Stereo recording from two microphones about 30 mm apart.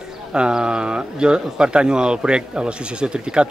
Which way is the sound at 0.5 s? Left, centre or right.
Right.